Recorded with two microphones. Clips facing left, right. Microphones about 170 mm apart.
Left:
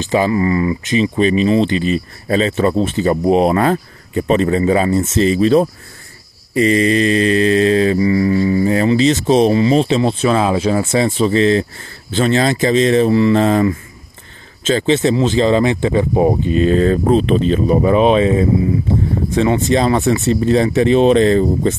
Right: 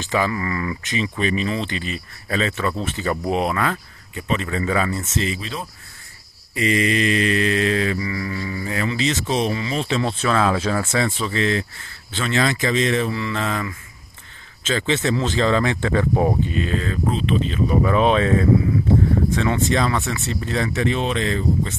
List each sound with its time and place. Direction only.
0.1 s speech: 25° left (ahead or behind); by 5.7 s 45° left (ahead or behind)
6.5 s mantra: 35° left (ahead or behind)
15.1 s speech: 20° left (ahead or behind); by 17.7 s 40° left (ahead or behind)
17.8 s speech: 20° left (ahead or behind); by 21.7 s 35° left (ahead or behind)